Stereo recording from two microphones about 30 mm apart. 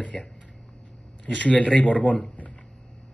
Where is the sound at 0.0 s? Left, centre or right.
Left.